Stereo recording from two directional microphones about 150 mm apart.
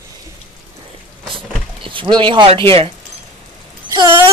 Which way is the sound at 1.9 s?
35° right (ahead or behind).